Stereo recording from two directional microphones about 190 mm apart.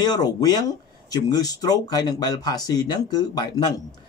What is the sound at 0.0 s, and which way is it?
A man's voice, 20° left (ahead or behind).